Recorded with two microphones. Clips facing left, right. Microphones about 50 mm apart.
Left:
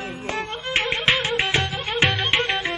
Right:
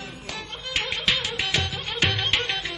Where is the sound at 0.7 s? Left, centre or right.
Left.